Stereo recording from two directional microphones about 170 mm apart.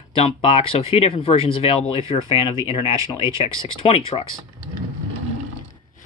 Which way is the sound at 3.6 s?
30° left (ahead or behind).